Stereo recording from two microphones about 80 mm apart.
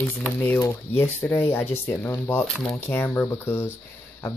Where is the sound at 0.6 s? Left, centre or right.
Left.